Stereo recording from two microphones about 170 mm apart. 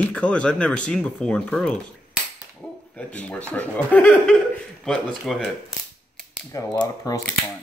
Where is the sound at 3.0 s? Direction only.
10° left (ahead or behind).